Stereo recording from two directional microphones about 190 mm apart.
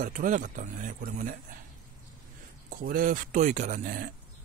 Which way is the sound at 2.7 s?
50° right (ahead or behind).